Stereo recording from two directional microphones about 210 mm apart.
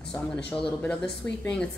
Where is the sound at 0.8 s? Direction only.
5° left (ahead or behind).